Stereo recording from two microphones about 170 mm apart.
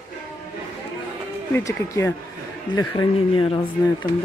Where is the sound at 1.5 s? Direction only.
15° left (ahead or behind).